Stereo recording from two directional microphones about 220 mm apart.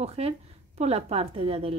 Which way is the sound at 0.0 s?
30° right (ahead or behind).